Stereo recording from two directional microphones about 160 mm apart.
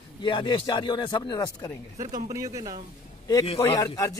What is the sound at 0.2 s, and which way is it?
Speech, 30° left (ahead or behind).